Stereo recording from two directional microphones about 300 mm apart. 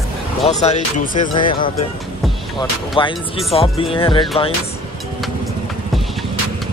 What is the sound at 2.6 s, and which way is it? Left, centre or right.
Speech, centre.